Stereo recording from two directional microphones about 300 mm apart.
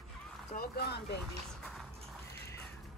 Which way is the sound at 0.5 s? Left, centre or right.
Left.